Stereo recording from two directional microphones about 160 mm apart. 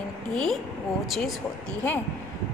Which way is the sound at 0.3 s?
5° left (ahead or behind).